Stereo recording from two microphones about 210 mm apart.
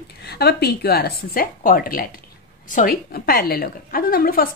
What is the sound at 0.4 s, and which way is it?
A woman's voice, 50° left (ahead or behind).